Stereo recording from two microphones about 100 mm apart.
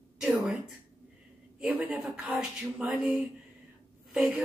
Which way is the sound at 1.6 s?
15° right (ahead or behind).